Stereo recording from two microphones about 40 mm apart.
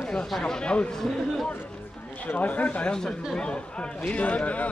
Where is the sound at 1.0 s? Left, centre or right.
Centre.